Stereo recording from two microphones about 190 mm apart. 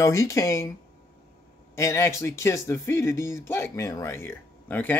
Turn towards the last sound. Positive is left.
turn(degrees=10)  # may be behind; listen again after turning